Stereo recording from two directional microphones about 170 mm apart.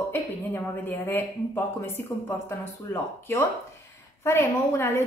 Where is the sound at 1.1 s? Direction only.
10° left (ahead or behind).